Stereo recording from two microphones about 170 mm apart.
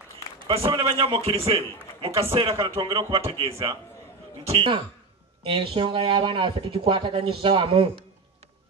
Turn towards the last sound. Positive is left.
turn(degrees=-30)  # may be behind; listen again after turning